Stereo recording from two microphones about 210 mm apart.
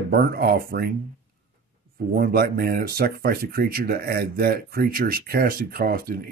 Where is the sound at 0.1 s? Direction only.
45° right (ahead or behind).